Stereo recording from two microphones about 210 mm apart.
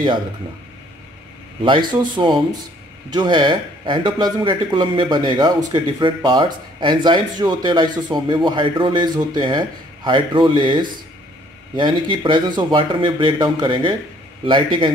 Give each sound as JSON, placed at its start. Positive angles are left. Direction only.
{"t": 1.6, "sound": "speech", "side_deg": -20}